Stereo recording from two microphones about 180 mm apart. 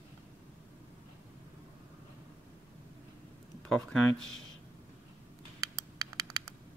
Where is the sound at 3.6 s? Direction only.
5° left (ahead or behind).